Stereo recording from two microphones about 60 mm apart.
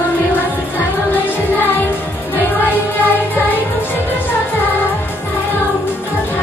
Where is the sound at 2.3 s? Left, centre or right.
Left.